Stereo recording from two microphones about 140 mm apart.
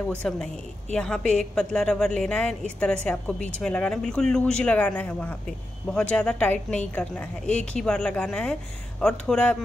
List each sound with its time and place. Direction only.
0.2 s a woman's voice: 5° left (ahead or behind)